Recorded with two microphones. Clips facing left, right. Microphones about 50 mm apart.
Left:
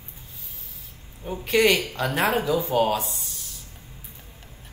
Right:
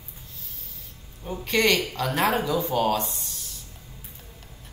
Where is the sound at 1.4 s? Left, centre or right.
Centre.